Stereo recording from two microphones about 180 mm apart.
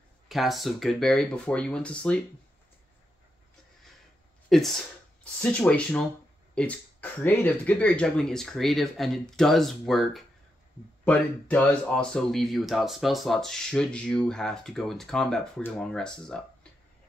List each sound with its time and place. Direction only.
0.3 s speech: centre (ahead or behind)
4.5 s speech: centre (ahead or behind)